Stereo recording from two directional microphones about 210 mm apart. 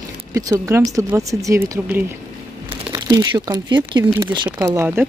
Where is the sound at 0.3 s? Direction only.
15° right (ahead or behind).